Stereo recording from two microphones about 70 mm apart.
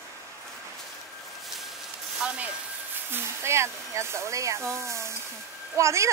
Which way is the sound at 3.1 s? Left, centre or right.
Right.